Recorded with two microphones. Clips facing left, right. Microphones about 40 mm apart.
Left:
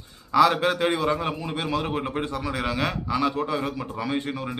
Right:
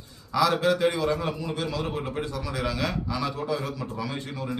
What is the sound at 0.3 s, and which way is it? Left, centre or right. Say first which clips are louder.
A man's voice: left 3 dB; left.